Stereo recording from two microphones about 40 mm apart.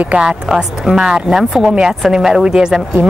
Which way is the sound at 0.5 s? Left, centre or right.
Centre.